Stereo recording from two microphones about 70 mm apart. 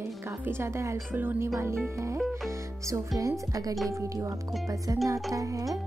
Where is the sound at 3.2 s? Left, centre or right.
Right.